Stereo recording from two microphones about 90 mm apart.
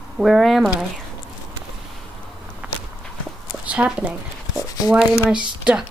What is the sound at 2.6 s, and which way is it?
Walk, 15° right (ahead or behind).